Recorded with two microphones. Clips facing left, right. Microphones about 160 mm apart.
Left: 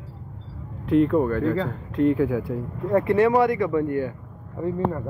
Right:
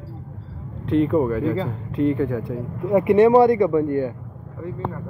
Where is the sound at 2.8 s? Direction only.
15° right (ahead or behind).